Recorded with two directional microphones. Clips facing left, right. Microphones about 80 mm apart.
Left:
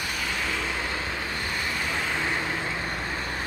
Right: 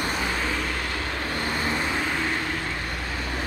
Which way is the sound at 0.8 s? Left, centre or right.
Centre.